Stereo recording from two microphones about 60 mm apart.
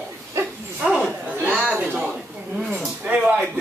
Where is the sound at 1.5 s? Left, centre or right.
Centre.